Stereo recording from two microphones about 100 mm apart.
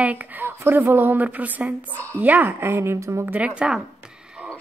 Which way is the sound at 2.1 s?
15° right (ahead or behind).